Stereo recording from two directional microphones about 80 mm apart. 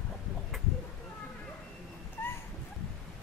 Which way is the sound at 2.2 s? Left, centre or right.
Left.